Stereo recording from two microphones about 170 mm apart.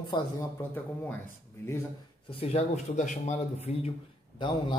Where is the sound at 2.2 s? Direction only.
35° left (ahead or behind).